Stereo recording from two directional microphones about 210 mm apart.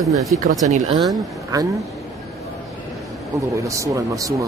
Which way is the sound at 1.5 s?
15° right (ahead or behind).